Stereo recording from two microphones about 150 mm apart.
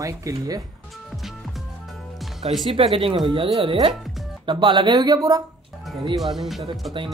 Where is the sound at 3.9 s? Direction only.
Centre (ahead or behind).